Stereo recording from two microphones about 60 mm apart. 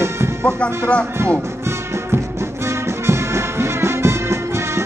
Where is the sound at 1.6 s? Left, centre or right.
Right.